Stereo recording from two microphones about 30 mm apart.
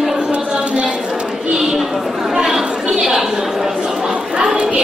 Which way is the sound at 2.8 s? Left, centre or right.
Centre.